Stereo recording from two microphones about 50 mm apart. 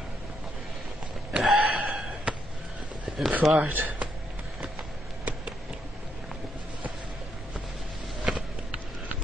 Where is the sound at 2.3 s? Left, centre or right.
Right.